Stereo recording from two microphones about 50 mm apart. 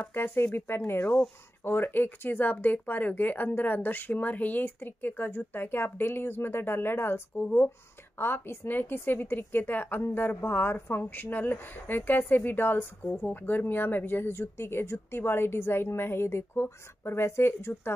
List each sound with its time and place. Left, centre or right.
0.1 s speech: left
0.9 s speech: left
1.6 s speech: left
8.2 s speech: left